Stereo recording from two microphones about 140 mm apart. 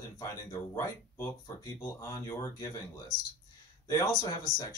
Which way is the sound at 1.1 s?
20° left (ahead or behind).